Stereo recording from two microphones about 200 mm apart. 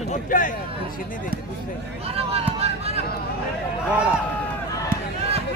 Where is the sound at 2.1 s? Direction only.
30° right (ahead or behind).